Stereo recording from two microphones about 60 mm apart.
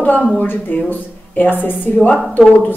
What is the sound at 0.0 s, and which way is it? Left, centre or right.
Speech, left.